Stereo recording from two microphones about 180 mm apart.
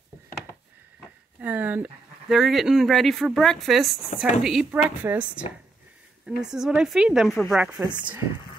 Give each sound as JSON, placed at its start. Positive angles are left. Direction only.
{"t": 1.4, "sound": "a woman's voice", "side_deg": -10}
{"t": 7.8, "sound": "speech", "side_deg": -25}